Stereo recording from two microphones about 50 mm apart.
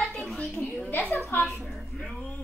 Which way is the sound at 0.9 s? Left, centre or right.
Left.